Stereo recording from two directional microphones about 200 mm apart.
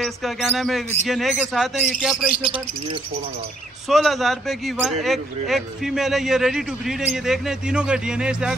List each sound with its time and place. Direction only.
0.0 s a man's voice: centre (ahead or behind)
2.3 s speech: 25° right (ahead or behind)
3.9 s a man's voice: centre (ahead or behind)